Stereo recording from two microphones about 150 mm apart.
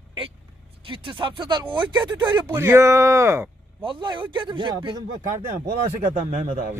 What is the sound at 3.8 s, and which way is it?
Speech, 30° right (ahead or behind).